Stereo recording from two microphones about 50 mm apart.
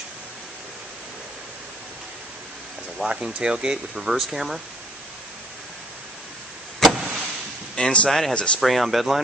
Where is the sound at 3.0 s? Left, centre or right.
Centre.